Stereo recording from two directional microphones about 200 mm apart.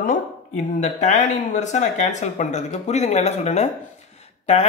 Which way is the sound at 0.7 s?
35° left (ahead or behind).